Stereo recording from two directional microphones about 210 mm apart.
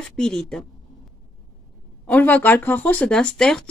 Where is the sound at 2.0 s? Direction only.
5° left (ahead or behind).